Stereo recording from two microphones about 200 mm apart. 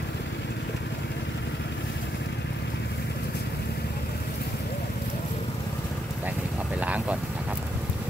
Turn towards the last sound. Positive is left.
turn(degrees=-5)  # may be behind; listen again after turning